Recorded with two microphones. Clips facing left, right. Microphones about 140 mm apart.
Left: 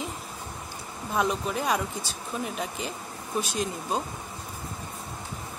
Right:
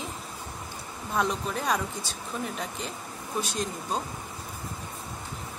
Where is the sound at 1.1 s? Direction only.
5° left (ahead or behind).